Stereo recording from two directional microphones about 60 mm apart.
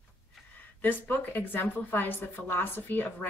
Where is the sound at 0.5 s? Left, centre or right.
Left.